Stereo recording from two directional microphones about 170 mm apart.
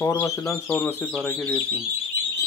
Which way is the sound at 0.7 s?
Centre (ahead or behind).